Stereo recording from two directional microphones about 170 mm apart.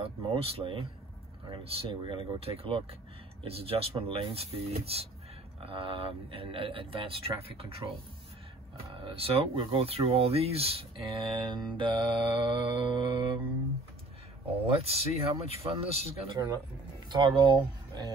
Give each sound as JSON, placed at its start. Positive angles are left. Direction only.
{"t": 0.0, "sound": "speech", "side_deg": -35}
{"t": 8.9, "sound": "speech", "side_deg": -35}
{"t": 14.8, "sound": "speech", "side_deg": -35}